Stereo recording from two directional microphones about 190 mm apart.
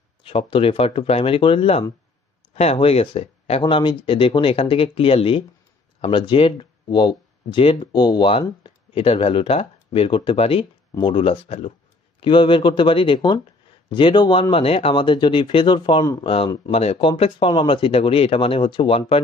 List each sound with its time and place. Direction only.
0.3 s speech: 30° left (ahead or behind)